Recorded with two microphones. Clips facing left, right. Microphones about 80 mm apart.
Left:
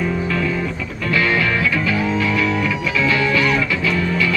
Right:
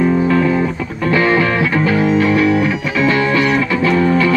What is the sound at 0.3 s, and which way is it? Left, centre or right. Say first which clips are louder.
Music: right 7 dB; right.